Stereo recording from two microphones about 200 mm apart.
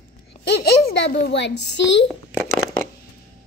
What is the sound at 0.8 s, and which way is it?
A child's voice, 60° left (ahead or behind).